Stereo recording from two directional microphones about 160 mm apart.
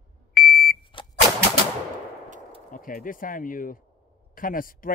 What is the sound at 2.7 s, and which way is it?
Speech, 60° left (ahead or behind).